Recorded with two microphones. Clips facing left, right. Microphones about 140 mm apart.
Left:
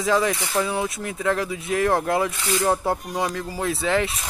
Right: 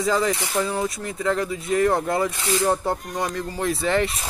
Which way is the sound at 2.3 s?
25° right (ahead or behind).